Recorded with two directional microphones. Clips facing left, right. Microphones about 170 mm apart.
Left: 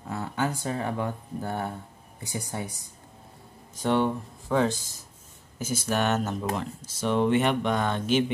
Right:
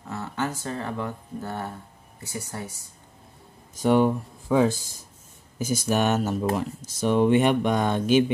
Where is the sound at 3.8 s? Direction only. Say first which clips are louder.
Right 4 dB; 10° right (ahead or behind).